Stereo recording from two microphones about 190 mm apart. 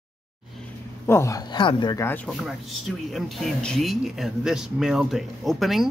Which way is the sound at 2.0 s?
5° left (ahead or behind).